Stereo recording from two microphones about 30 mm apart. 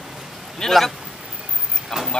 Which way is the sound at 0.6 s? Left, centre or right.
Left.